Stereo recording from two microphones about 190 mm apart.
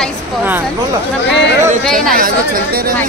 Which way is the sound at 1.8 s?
5° left (ahead or behind).